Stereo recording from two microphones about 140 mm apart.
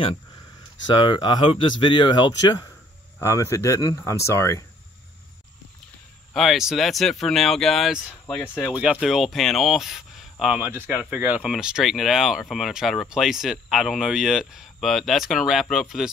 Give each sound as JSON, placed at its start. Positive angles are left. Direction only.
{"t": 0.8, "sound": "speech", "side_deg": 35}
{"t": 3.2, "sound": "speech", "side_deg": 20}
{"t": 6.3, "sound": "speech", "side_deg": 0}
{"t": 9.0, "sound": "speech", "side_deg": 0}